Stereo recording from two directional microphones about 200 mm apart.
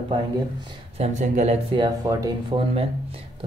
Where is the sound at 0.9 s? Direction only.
35° right (ahead or behind).